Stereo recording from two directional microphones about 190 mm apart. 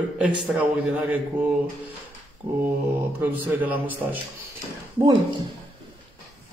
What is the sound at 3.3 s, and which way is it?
Speech, 10° right (ahead or behind).